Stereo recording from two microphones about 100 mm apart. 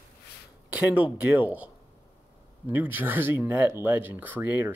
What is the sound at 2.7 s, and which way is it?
Speech, 15° right (ahead or behind).